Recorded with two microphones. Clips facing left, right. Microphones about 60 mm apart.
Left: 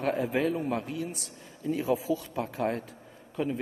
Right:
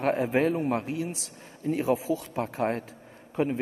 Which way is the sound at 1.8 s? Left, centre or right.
Right.